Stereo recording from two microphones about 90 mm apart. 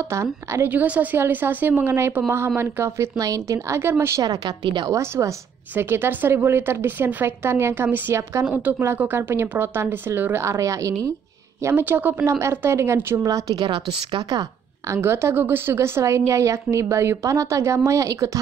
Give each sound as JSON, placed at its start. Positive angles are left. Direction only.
{"t": 0.1, "sound": "a woman's voice", "side_deg": -30}
{"t": 0.7, "sound": "a woman's voice", "side_deg": -15}
{"t": 4.2, "sound": "a woman's voice", "side_deg": -45}
{"t": 4.8, "sound": "a woman's voice", "side_deg": -35}
{"t": 8.5, "sound": "speech", "side_deg": -20}
{"t": 11.7, "sound": "speech", "side_deg": -20}
{"t": 12.4, "sound": "speech", "side_deg": -30}
{"t": 13.3, "sound": "a woman's voice", "side_deg": -45}
{"t": 13.7, "sound": "a woman's voice", "side_deg": -60}
{"t": 15.0, "sound": "a woman's voice", "side_deg": -30}